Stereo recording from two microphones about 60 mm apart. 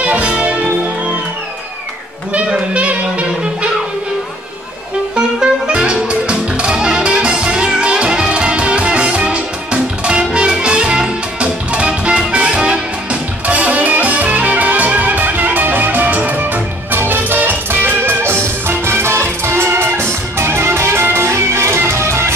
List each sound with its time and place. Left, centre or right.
0.0 s music: right
2.3 s music: right
5.1 s music: centre; by 22.3 s right